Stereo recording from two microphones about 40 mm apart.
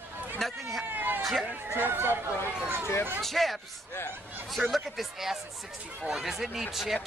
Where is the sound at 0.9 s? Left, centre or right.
Right.